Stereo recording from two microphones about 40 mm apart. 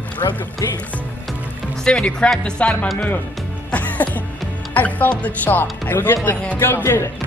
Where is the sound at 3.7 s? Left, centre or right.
Left.